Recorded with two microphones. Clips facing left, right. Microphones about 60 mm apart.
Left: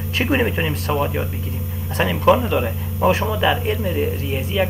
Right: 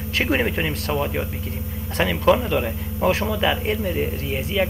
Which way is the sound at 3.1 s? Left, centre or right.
Left.